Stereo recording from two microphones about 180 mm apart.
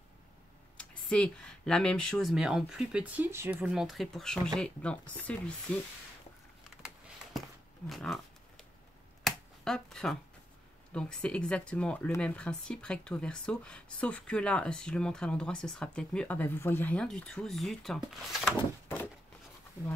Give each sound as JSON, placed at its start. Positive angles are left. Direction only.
{"t": 0.7, "sound": "speech", "side_deg": 5}
{"t": 7.9, "sound": "a sound", "side_deg": 0}
{"t": 9.2, "sound": "finger snapping", "side_deg": 0}
{"t": 10.9, "sound": "speech", "side_deg": 5}